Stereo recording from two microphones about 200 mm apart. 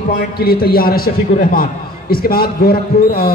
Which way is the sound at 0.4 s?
50° left (ahead or behind).